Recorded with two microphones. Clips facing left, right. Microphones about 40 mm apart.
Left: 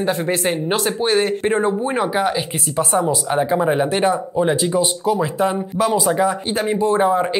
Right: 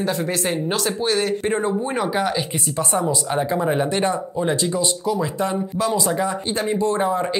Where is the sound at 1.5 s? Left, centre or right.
Centre.